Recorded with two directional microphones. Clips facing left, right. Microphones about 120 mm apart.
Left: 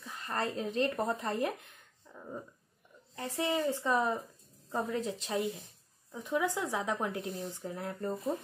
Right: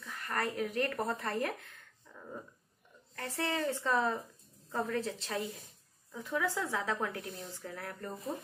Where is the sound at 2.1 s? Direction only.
20° left (ahead or behind).